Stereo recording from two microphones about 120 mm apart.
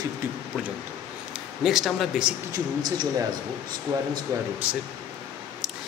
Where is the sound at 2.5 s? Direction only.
35° right (ahead or behind).